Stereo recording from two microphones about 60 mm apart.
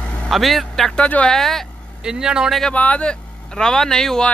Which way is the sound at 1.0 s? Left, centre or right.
Left.